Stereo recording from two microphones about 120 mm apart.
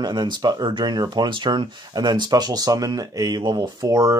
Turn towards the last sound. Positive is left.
turn(degrees=-30)  # may be behind; listen again after turning